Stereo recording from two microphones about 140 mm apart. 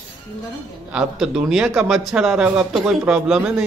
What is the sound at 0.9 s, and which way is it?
Speech, 5° right (ahead or behind).